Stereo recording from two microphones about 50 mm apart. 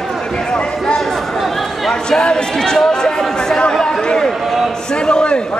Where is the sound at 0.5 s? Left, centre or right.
Left.